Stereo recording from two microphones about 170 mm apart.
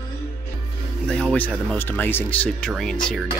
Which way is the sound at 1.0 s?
5° left (ahead or behind).